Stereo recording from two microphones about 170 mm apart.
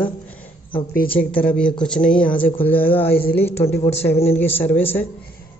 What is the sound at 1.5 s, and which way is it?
A woman's voice, 5° left (ahead or behind).